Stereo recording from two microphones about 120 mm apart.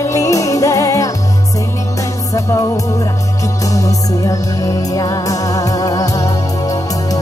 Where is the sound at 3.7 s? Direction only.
30° left (ahead or behind).